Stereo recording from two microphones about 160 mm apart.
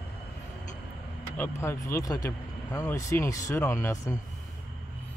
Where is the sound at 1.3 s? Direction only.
15° left (ahead or behind).